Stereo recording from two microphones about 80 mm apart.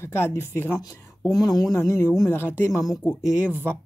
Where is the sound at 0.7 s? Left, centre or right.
Left.